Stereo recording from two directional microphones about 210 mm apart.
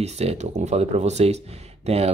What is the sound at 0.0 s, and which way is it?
Speech, 30° right (ahead or behind).